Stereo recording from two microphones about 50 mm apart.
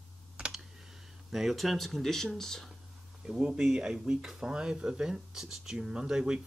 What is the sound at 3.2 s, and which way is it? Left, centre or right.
Speech, centre.